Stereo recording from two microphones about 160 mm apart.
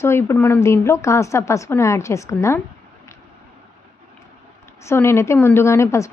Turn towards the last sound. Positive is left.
turn(degrees=15)  # may be behind; listen again after turning